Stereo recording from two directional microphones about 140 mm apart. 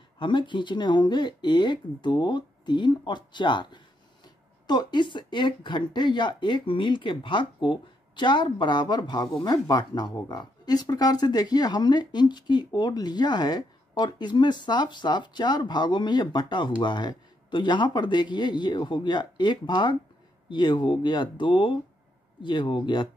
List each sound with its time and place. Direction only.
0.2 s speech: 35° left (ahead or behind)